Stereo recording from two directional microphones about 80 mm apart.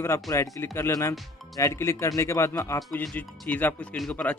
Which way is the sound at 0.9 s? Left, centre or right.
Left.